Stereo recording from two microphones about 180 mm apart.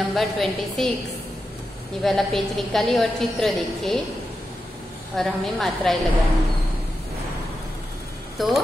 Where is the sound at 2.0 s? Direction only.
Centre (ahead or behind).